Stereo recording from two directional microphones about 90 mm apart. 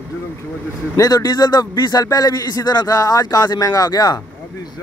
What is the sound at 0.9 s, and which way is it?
A man's voice, 45° left (ahead or behind).